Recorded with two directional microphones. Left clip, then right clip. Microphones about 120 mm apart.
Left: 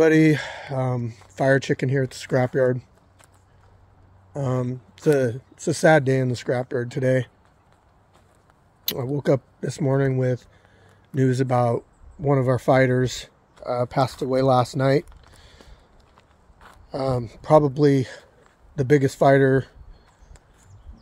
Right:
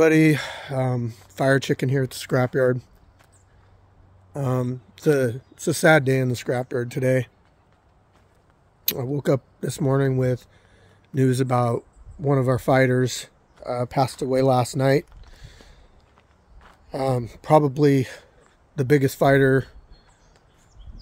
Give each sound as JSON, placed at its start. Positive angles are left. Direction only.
{"t": 0.0, "sound": "speech", "side_deg": -30}
{"t": 4.3, "sound": "speech", "side_deg": -30}
{"t": 8.8, "sound": "speech", "side_deg": -20}
{"t": 16.9, "sound": "speech", "side_deg": -25}